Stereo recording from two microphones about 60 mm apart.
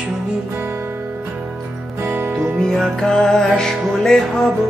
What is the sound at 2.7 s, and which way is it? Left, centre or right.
Music, centre.